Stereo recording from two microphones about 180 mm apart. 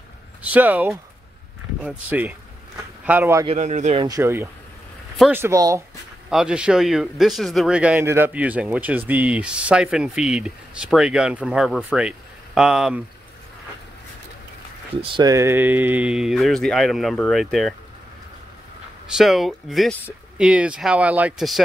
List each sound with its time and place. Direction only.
0.4 s speech: 10° right (ahead or behind)
3.5 s speech: 40° right (ahead or behind)
4.0 s speech: 15° right (ahead or behind)
6.3 s speech: 5° right (ahead or behind)
15.0 s speech: 25° right (ahead or behind); by 17.7 s centre (ahead or behind)
19.1 s speech: centre (ahead or behind)